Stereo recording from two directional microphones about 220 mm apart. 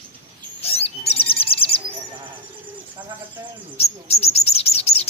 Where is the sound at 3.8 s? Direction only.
30° left (ahead or behind).